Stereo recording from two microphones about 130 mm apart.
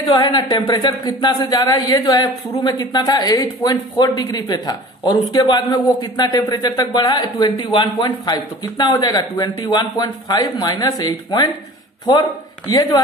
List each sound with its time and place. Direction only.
0.1 s speech: 35° left (ahead or behind)